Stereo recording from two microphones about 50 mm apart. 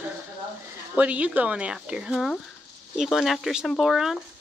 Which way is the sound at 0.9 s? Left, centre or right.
Right.